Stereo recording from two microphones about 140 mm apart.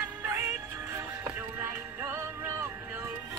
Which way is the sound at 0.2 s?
20° right (ahead or behind).